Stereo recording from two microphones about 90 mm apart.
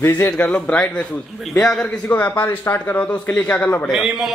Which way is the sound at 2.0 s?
20° left (ahead or behind).